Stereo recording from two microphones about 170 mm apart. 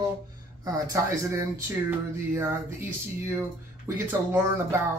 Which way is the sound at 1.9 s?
15° right (ahead or behind).